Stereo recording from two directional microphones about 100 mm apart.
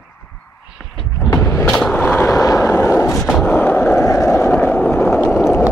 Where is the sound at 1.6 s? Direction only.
5° left (ahead or behind).